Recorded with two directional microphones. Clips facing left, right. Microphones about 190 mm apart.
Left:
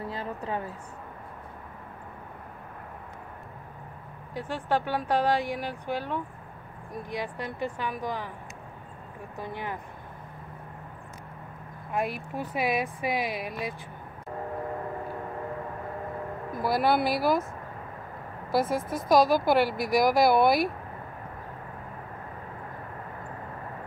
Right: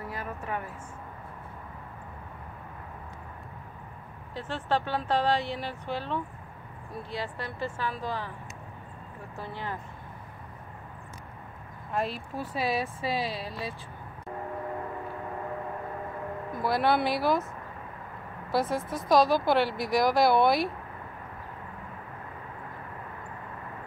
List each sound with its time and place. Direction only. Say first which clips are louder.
0.1 s a woman's voice: even; 25° left (ahead or behind)
4.4 s speech: left 1 dB; 15° left (ahead or behind)
9.4 s speech: left 2 dB; 15° left (ahead or behind)
11.9 s speech: left 1 dB; 15° left (ahead or behind)
16.6 s speech: left 1 dB; 5° left (ahead or behind)
18.5 s speech: left 2 dB; centre (ahead or behind)